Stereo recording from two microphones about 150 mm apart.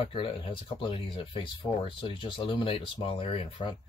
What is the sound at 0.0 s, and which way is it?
Speech, 35° left (ahead or behind).